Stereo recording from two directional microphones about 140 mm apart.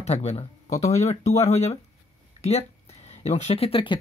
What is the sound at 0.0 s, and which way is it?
Speech, 50° left (ahead or behind).